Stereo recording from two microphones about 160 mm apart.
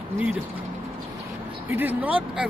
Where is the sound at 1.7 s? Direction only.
10° right (ahead or behind).